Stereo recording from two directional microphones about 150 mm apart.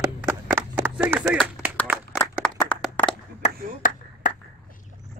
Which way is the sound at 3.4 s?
65° left (ahead or behind).